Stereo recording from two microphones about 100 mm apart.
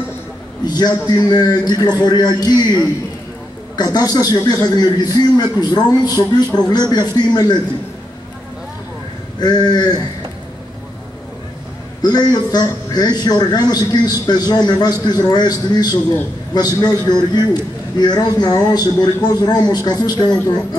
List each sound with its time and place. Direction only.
0.7 s a man's voice: 45° left (ahead or behind)
9.4 s a man's voice: 45° left (ahead or behind)
12.0 s a man's voice: 45° left (ahead or behind)